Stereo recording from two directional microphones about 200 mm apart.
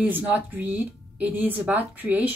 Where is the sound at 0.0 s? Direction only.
10° right (ahead or behind).